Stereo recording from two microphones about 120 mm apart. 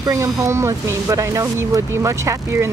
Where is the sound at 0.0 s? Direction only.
25° right (ahead or behind).